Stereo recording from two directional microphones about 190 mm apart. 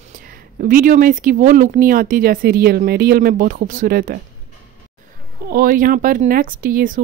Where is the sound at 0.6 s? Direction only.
45° right (ahead or behind).